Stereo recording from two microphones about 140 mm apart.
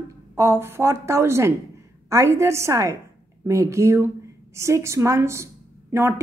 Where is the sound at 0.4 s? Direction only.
20° right (ahead or behind).